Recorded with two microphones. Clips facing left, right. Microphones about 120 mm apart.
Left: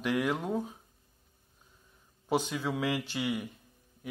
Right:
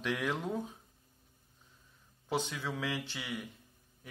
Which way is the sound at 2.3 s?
15° left (ahead or behind).